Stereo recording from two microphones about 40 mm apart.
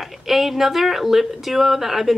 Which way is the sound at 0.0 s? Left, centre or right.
Centre.